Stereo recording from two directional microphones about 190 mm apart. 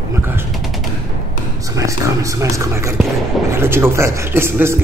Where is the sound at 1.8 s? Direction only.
15° right (ahead or behind).